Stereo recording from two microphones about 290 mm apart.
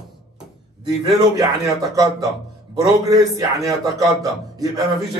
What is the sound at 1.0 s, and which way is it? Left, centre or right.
Speech, centre.